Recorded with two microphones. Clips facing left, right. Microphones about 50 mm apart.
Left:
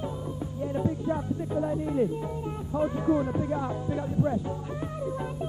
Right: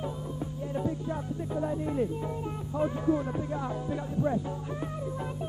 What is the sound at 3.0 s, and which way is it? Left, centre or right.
Music, centre.